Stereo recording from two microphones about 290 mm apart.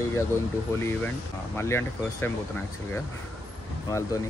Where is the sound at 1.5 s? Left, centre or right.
Centre.